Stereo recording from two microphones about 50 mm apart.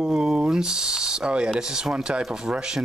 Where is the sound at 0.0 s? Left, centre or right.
Centre.